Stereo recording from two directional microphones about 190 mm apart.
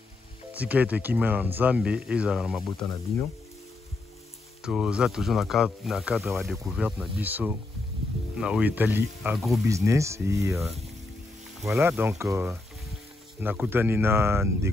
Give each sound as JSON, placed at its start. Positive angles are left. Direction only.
{"t": 0.5, "sound": "speech", "side_deg": -10}
{"t": 4.6, "sound": "speech", "side_deg": -5}
{"t": 9.7, "sound": "speech", "side_deg": -15}